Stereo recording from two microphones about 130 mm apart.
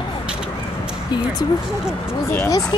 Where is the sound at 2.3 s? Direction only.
20° left (ahead or behind).